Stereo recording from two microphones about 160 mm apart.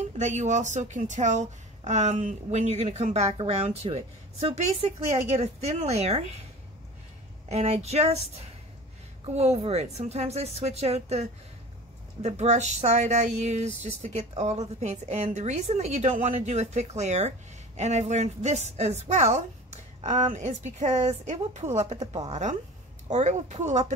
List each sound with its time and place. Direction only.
0.2 s a woman's voice: 45° right (ahead or behind)
7.4 s a woman's voice: 40° right (ahead or behind)
9.2 s a woman's voice: 40° right (ahead or behind)